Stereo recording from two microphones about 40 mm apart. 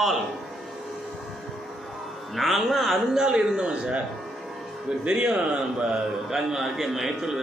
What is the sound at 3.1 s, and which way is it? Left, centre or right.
Speech, right.